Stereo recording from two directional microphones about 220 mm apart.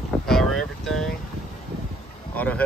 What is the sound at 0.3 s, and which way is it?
Music, centre (ahead or behind).